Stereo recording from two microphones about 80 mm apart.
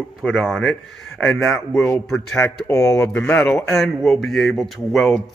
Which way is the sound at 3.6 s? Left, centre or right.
Centre.